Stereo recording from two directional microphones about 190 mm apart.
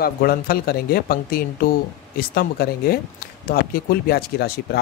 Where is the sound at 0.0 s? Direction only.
50° left (ahead or behind).